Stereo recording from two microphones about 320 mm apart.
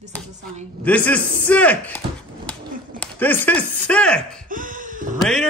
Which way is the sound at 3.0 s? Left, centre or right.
Centre.